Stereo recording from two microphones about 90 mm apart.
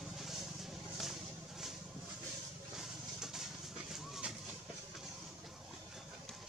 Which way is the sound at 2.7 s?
5° right (ahead or behind).